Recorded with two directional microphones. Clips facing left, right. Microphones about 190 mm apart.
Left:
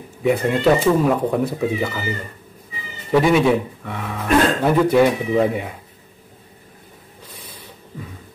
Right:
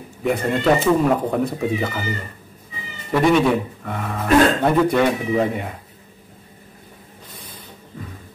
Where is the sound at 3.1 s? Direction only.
5° left (ahead or behind).